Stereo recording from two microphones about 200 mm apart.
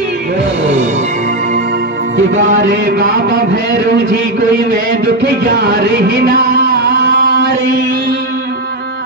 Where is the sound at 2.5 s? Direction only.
60° right (ahead or behind).